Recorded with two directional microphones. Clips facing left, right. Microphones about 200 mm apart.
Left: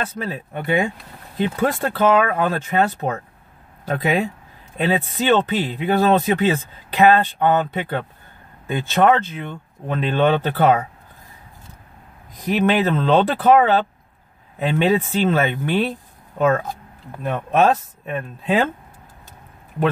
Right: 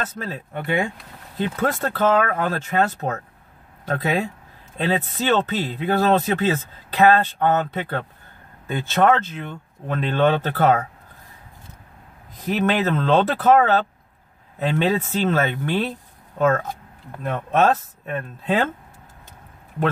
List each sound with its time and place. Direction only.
0.0 s speech: 15° left (ahead or behind)
12.4 s speech: 15° left (ahead or behind)